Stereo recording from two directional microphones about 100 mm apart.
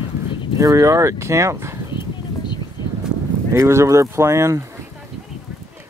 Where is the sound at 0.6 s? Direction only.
30° right (ahead or behind).